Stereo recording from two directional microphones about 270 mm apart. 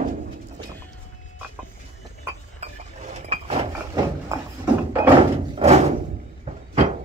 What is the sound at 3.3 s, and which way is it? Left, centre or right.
Chink, right.